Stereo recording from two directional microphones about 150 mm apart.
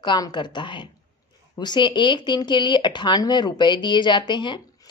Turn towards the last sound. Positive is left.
turn(degrees=30)  # may be behind; listen again after turning